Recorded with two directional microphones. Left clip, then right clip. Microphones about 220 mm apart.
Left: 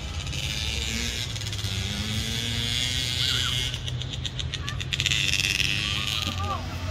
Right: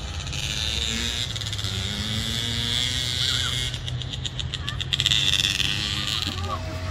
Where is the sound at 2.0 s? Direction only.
25° left (ahead or behind).